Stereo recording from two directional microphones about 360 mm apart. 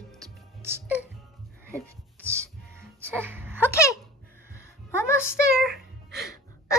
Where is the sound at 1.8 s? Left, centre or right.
Centre.